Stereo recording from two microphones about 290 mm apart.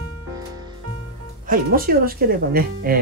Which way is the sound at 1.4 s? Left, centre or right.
Right.